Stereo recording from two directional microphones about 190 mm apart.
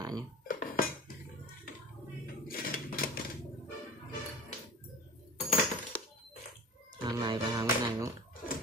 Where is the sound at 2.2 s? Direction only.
50° left (ahead or behind).